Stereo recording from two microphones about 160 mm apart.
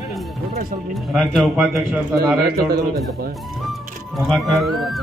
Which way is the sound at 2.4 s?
75° right (ahead or behind).